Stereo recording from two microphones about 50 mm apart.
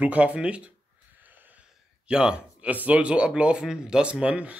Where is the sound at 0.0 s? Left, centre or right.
Right.